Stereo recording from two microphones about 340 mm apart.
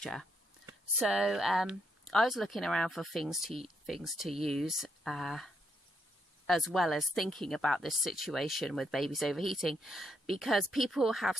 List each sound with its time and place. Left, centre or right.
0.0 s speech: centre